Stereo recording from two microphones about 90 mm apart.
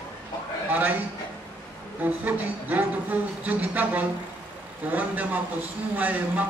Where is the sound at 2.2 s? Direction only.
15° right (ahead or behind).